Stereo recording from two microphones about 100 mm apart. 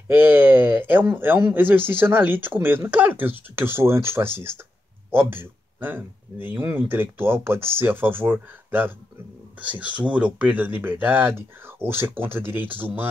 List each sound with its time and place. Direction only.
0.1 s speech: 20° right (ahead or behind)